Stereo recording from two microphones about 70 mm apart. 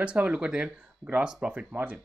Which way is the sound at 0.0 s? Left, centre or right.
Centre.